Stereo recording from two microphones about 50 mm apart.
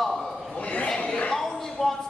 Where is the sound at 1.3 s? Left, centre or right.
Centre.